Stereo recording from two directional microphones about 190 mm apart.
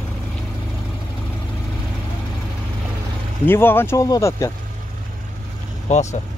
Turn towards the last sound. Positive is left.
turn(degrees=35)  # may be behind; listen again after turning